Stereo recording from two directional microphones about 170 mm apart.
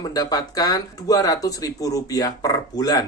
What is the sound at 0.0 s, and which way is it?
Speech, 20° left (ahead or behind).